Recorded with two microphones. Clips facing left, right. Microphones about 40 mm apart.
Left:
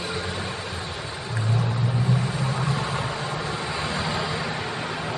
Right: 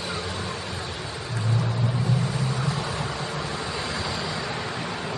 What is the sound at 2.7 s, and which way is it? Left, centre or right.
Vehicle, left.